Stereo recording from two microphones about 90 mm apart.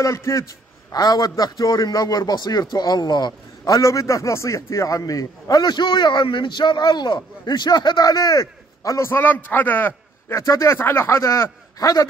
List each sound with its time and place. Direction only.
0.0 s a man's voice: 35° left (ahead or behind)
0.9 s a man's voice: 50° left (ahead or behind)
9.1 s a man's voice: 20° left (ahead or behind)
10.3 s a man's voice: 35° left (ahead or behind)